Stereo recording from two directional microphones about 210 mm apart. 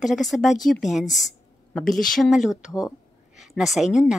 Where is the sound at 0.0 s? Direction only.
Centre (ahead or behind).